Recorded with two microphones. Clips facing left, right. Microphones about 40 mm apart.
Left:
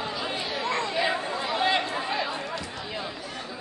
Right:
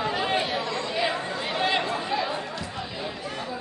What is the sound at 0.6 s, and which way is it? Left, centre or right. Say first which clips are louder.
Chatter: left 2 dB; left.